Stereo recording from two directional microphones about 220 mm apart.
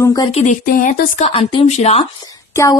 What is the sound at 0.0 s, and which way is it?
Speech, 15° left (ahead or behind).